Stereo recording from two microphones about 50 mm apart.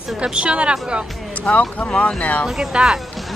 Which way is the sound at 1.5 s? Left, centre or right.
Left.